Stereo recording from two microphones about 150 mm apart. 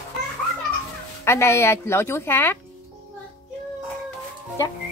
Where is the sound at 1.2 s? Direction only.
15° left (ahead or behind).